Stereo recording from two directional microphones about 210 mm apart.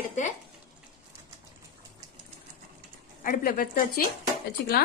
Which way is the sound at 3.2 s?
45° left (ahead or behind).